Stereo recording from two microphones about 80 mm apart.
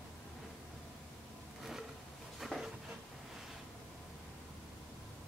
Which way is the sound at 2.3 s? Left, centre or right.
Centre.